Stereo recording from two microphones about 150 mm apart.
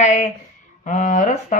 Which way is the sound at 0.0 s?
55° left (ahead or behind).